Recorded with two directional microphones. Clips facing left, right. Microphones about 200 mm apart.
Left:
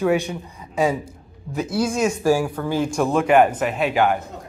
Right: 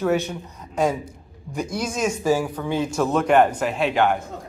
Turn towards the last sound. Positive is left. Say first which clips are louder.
# left 1 dB
turn(degrees=5)  # may be behind; listen again after turning